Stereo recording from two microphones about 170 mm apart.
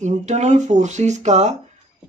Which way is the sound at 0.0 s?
45° right (ahead or behind).